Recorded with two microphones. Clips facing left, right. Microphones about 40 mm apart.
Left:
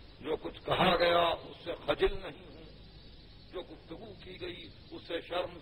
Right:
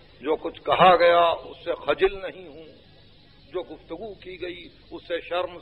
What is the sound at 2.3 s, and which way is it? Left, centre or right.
A man's voice, right.